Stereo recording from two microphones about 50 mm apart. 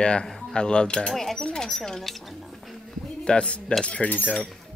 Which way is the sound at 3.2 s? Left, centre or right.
Left.